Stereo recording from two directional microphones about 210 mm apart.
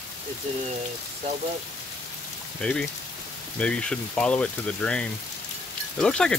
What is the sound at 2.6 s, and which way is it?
Speech, 5° left (ahead or behind).